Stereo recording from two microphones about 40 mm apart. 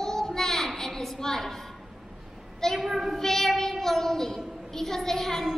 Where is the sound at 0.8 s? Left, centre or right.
Centre.